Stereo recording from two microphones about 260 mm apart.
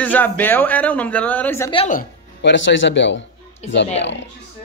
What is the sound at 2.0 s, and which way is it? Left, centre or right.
Speech, left.